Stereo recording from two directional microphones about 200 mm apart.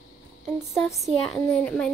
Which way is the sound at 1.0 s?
5° left (ahead or behind).